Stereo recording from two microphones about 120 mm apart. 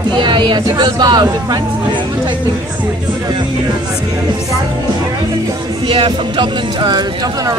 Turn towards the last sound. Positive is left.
turn(degrees=-40)  # may be behind; listen again after turning